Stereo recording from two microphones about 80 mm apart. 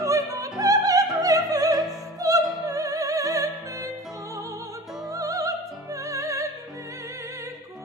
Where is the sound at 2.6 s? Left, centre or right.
Right.